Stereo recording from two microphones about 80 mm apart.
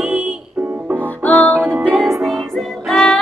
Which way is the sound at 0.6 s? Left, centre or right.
Right.